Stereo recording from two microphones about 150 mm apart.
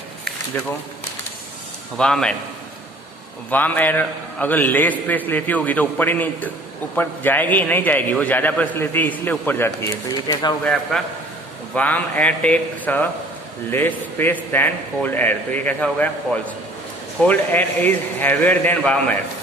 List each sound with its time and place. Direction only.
2.0 s a man's voice: 5° left (ahead or behind)
3.4 s a man's voice: 10° left (ahead or behind)
10.6 s a man's voice: 5° left (ahead or behind)